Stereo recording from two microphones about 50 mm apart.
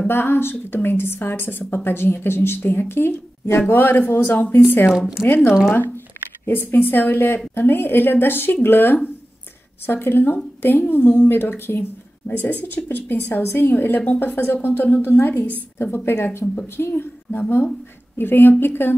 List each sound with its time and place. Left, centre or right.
0.1 s speech: left
4.9 s speech: centre
6.4 s speech: left
12.3 s a woman's voice: left